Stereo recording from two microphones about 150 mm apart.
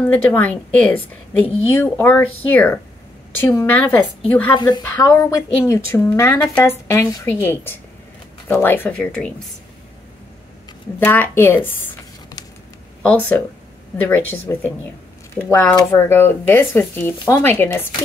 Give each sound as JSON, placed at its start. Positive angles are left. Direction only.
{"t": 0.0, "sound": "a woman's voice", "side_deg": 10}
{"t": 4.6, "sound": "a woman's voice", "side_deg": 30}
{"t": 11.1, "sound": "a woman's voice", "side_deg": 15}
{"t": 13.0, "sound": "a woman's voice", "side_deg": 10}